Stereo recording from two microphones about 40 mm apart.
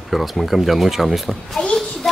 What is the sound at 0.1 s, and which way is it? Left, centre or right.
Speech, centre.